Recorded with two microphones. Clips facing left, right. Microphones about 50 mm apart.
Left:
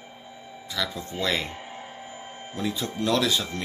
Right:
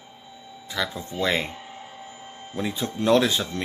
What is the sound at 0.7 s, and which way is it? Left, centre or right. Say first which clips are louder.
Speech: right 2 dB; right.